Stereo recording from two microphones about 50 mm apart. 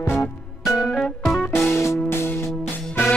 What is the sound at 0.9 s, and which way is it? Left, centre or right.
Music, centre.